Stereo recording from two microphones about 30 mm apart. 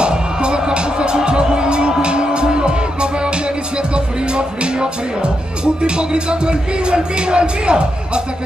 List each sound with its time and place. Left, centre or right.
0.0 s music: right